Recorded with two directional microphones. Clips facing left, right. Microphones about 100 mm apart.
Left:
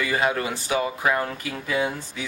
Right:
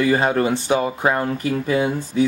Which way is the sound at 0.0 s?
35° right (ahead or behind).